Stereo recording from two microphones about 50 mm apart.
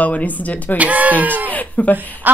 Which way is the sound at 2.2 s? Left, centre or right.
Right.